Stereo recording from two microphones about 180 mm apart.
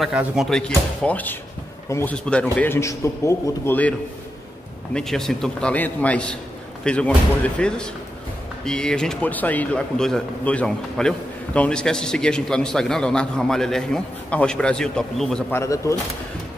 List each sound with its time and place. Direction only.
0.0 s a man's voice: centre (ahead or behind)
4.9 s a man's voice: centre (ahead or behind)
15.5 s a man's voice: 15° left (ahead or behind)